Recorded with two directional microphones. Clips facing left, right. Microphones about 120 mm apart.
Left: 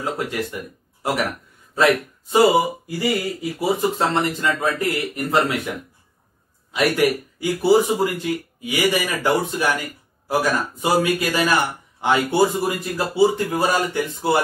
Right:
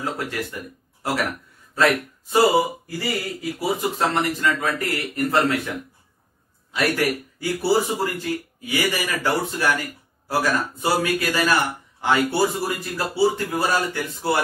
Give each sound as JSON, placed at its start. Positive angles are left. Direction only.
{"t": 0.0, "sound": "speech", "side_deg": 15}
{"t": 6.7, "sound": "speech", "side_deg": 15}